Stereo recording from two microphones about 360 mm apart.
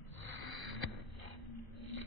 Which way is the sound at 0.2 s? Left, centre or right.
Right.